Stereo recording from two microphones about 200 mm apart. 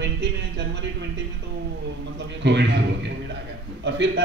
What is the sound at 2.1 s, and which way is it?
Speech, 60° right (ahead or behind).